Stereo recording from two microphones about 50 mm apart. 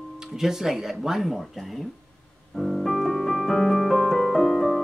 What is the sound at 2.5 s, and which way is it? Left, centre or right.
Piano, centre.